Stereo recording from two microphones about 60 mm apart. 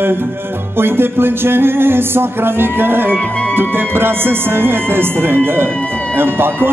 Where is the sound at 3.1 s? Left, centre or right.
Centre.